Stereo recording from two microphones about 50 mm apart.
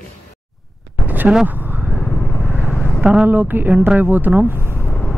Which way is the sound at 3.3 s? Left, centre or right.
Right.